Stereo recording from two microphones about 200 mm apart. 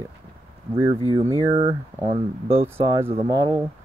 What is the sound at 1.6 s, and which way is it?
Speech, 20° right (ahead or behind).